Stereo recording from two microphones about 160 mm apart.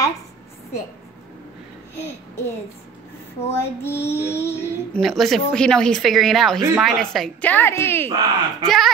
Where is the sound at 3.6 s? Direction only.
15° left (ahead or behind).